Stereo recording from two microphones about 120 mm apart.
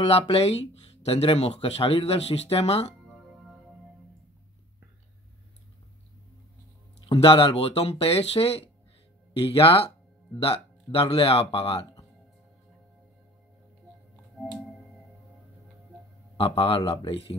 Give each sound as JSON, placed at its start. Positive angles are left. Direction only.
{"t": 0.0, "sound": "speech", "side_deg": 55}
{"t": 7.1, "sound": "speech", "side_deg": 50}
{"t": 16.3, "sound": "speech", "side_deg": 50}